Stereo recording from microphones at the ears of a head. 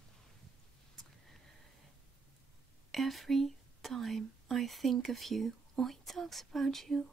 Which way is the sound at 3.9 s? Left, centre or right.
Right.